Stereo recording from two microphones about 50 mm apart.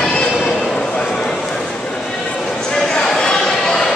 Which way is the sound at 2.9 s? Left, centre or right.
Centre.